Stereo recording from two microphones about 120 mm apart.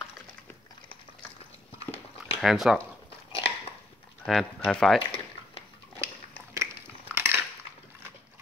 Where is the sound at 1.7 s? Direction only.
55° left (ahead or behind).